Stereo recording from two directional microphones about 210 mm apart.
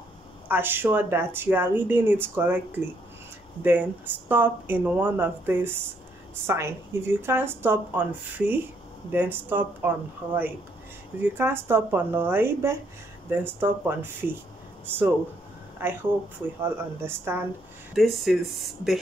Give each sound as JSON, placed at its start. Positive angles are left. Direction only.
{"t": 0.5, "sound": "speech", "side_deg": -10}
{"t": 17.9, "sound": "speech", "side_deg": 0}